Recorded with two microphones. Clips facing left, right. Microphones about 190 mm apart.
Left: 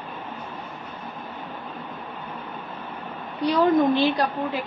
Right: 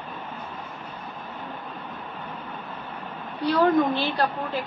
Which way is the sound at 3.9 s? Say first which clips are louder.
Left 5 dB; 15° left (ahead or behind).